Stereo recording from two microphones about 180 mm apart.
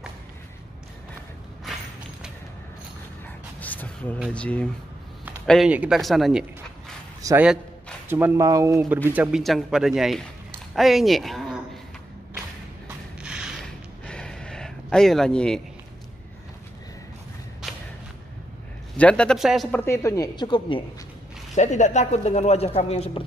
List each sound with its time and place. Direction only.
3.6 s a sound: 10° left (ahead or behind)
4.3 s speech: 5° left (ahead or behind)
5.5 s speech: 5° right (ahead or behind)
7.2 s a sound: 20° right (ahead or behind)
8.1 s speech: 10° right (ahead or behind)
10.7 s a sound: centre (ahead or behind)
18.9 s speech: 5° left (ahead or behind)
19.8 s speech: 15° left (ahead or behind)
21.5 s speech: 40° left (ahead or behind)